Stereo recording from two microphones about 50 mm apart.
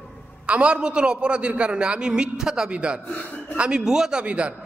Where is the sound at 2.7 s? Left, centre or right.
Right.